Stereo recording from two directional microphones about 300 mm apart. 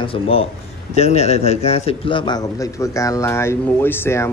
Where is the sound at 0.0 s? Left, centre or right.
Centre.